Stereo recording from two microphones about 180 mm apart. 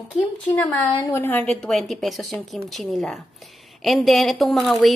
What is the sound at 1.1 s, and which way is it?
A woman's voice, 10° left (ahead or behind).